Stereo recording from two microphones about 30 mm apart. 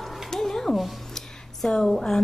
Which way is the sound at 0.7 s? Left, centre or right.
Centre.